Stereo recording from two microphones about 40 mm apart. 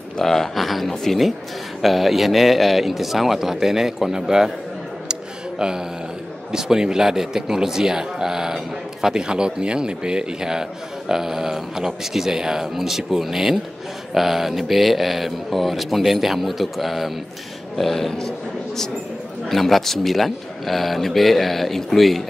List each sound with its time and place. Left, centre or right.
0.2 s speech: centre
5.6 s a man's voice: centre
19.5 s speech: centre